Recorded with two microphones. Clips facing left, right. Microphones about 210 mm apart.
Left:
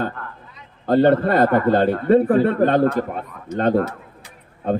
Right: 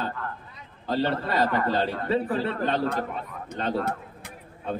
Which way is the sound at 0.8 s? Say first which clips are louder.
Left 11 dB; 55° left (ahead or behind).